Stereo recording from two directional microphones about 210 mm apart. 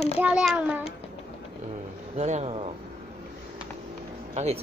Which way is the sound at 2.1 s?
35° right (ahead or behind).